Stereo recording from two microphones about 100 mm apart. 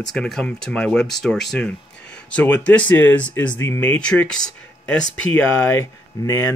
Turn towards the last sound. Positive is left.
turn(degrees=30)  # may be behind; listen again after turning